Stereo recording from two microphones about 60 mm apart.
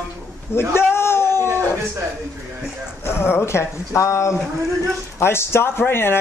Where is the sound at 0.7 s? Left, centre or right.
Left.